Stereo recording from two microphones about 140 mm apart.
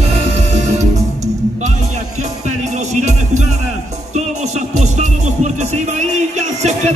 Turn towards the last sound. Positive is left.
turn(degrees=-55)  # may be behind; listen again after turning